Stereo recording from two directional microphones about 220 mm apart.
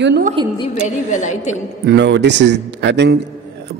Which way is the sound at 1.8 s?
50° right (ahead or behind).